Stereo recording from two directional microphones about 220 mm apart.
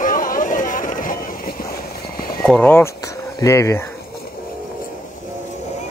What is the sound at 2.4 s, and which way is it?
Speech, 5° left (ahead or behind).